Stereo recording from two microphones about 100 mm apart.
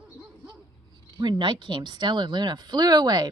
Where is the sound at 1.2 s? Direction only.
50° right (ahead or behind).